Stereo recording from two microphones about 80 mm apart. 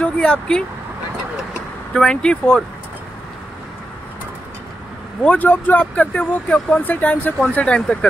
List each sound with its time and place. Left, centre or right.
0.0 s speech: centre
2.0 s speech: centre
5.2 s speech: centre